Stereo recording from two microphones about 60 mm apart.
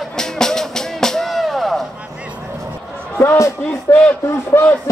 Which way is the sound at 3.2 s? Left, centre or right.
Left.